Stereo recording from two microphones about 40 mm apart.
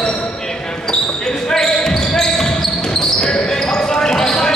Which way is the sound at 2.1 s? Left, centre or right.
Centre.